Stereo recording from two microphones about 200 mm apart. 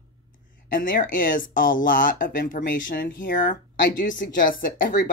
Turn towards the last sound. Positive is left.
turn(degrees=45)  # may be behind; listen again after turning